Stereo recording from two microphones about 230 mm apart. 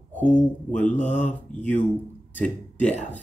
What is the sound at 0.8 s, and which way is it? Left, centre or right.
Mantra, left.